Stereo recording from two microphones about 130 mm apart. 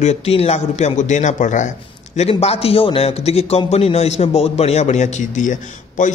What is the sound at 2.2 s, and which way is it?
A man's voice, 55° left (ahead or behind).